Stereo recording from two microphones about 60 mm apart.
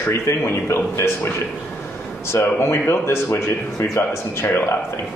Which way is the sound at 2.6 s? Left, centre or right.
Left.